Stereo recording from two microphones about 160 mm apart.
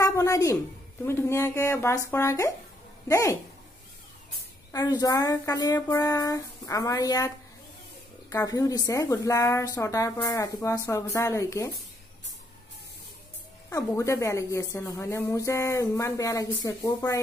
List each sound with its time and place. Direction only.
0.0 s a woman's voice: 20° left (ahead or behind)
4.7 s a woman's voice: 25° left (ahead or behind)
13.7 s a woman's voice: 20° left (ahead or behind)